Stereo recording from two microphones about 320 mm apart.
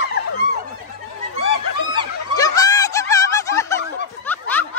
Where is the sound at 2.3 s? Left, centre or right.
Centre.